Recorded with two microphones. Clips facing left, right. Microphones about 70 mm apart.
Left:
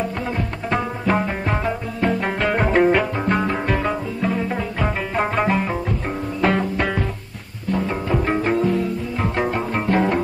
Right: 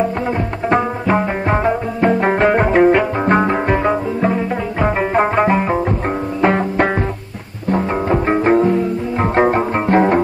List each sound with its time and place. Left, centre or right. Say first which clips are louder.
1.5 s music: right 7 dB; right
2.6 s music: right 1 dB; centre
3.3 s music: right 6 dB; right
7.7 s music: right 5 dB; right